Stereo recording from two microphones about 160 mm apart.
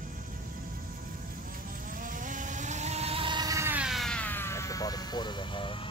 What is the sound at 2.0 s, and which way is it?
Vehicle, 55° right (ahead or behind).